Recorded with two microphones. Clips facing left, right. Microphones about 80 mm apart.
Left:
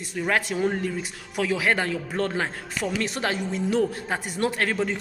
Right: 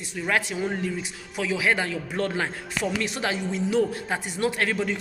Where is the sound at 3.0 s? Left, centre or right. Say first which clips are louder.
Left 1 dB; left.